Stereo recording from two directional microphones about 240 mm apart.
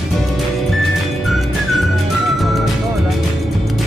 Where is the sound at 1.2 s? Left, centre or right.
Centre.